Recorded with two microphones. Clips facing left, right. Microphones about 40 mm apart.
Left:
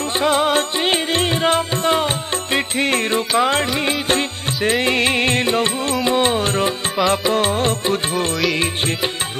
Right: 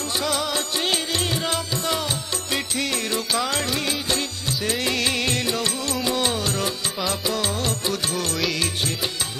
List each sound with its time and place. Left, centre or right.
0.2 s music: left
4.1 s music: left